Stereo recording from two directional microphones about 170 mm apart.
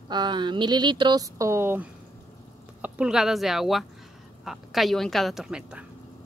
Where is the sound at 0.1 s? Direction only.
25° right (ahead or behind).